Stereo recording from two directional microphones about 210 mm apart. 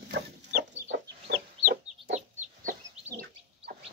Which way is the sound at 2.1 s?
35° right (ahead or behind).